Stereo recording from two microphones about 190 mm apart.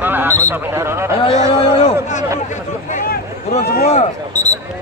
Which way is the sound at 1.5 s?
35° left (ahead or behind).